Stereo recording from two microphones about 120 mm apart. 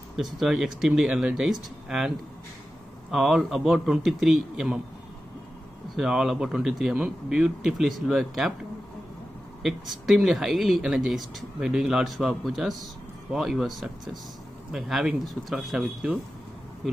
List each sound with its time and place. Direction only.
0.1 s speech: 5° right (ahead or behind)
5.9 s speech: 5° right (ahead or behind)
9.6 s speech: centre (ahead or behind)